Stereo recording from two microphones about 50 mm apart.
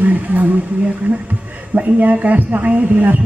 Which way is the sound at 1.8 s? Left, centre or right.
Right.